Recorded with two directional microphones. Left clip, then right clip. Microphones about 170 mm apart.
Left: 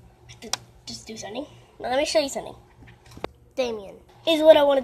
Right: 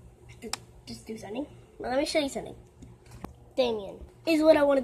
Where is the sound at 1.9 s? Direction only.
25° right (ahead or behind).